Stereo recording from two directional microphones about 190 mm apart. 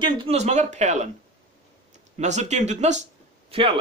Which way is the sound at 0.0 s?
30° right (ahead or behind).